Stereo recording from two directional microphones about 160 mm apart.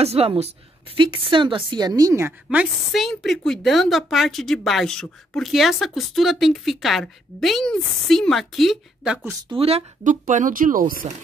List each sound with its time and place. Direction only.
0.0 s a woman's voice: 40° right (ahead or behind); by 9.3 s 5° right (ahead or behind)
9.5 s a woman's voice: 35° right (ahead or behind)
10.0 s speech: 55° right (ahead or behind)